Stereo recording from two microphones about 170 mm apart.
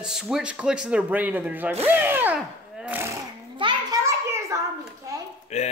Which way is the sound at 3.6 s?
30° right (ahead or behind).